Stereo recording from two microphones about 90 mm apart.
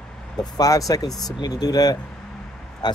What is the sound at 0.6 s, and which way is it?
A man's voice, 40° left (ahead or behind).